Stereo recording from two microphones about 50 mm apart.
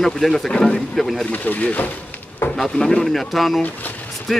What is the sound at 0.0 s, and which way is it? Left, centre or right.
Speech, centre.